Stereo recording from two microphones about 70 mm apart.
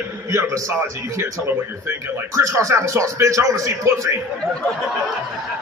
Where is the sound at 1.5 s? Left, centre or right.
Right.